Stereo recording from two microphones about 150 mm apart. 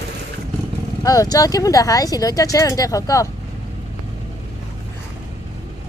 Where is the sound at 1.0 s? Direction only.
25° left (ahead or behind).